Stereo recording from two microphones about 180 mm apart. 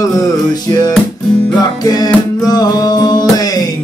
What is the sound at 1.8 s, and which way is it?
Music, 20° left (ahead or behind).